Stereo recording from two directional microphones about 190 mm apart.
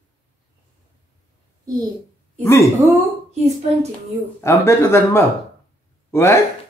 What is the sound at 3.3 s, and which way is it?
Speech, 35° right (ahead or behind).